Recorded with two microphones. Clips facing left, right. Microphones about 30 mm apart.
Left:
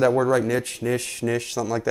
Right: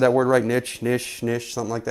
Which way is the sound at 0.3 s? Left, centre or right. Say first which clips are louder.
Right 2 dB; centre.